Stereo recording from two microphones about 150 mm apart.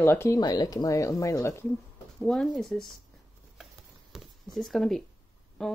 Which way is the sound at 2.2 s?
5° left (ahead or behind).